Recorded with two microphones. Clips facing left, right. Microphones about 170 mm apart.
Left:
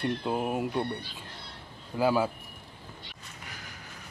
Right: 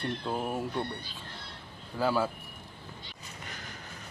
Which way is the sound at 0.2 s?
15° left (ahead or behind).